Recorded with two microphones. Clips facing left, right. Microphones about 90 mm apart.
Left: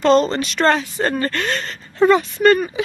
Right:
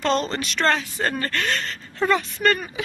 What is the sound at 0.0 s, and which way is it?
Speech, centre (ahead or behind).